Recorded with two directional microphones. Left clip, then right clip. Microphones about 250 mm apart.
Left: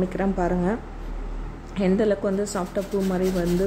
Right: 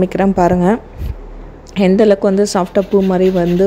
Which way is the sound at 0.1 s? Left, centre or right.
Right.